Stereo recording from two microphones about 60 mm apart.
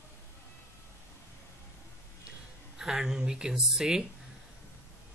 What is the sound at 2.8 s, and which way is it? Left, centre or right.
Speech, centre.